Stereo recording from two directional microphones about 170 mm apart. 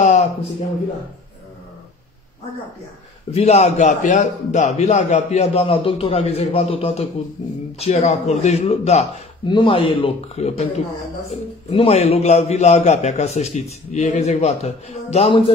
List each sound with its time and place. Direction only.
0.0 s a sound: 45° left (ahead or behind)
3.3 s a man's voice: 40° left (ahead or behind)
9.5 s a man's voice: 30° left (ahead or behind)
11.7 s a man's voice: 35° left (ahead or behind)